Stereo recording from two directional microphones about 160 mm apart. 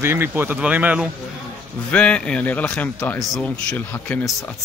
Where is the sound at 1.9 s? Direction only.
5° left (ahead or behind).